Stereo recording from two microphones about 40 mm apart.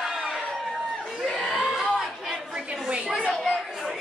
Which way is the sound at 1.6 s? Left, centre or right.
Centre.